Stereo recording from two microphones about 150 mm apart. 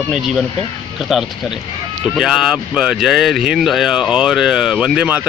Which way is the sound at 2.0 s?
5° right (ahead or behind).